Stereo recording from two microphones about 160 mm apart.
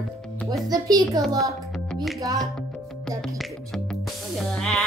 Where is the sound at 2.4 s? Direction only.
Centre (ahead or behind).